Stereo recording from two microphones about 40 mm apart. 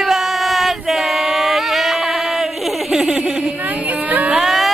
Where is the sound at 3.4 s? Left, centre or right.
Right.